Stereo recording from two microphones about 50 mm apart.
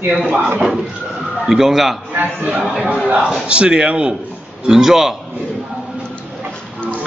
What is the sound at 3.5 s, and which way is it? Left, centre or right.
Speech, centre.